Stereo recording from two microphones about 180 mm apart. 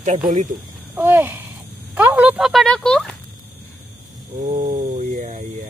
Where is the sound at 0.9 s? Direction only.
10° right (ahead or behind).